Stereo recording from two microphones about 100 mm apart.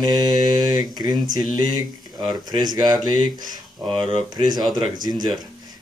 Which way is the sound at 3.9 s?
60° right (ahead or behind).